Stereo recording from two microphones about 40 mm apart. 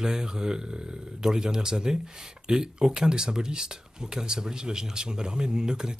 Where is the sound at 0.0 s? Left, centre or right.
Centre.